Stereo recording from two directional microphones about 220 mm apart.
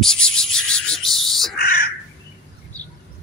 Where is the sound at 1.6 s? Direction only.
45° left (ahead or behind).